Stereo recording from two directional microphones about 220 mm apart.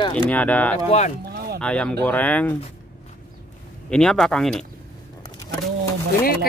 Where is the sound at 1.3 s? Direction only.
45° right (ahead or behind).